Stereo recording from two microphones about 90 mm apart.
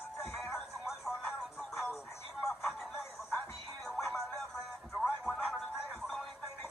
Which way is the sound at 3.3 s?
10° left (ahead or behind).